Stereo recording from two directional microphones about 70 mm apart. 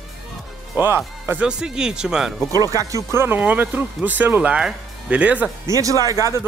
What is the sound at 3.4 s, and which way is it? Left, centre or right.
Speech, right.